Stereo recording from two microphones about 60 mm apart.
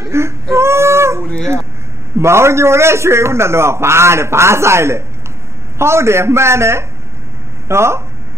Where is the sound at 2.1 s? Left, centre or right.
Right.